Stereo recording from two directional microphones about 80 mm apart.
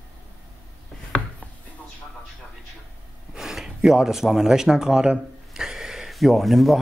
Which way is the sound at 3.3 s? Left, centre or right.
Centre.